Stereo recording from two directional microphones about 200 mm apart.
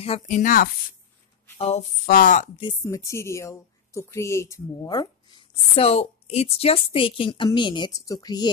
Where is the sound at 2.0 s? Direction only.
45° left (ahead or behind).